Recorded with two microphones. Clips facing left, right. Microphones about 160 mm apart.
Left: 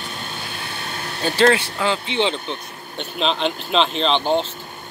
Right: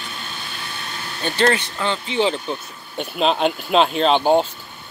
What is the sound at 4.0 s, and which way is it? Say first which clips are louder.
Speech: right 4 dB; 45° right (ahead or behind).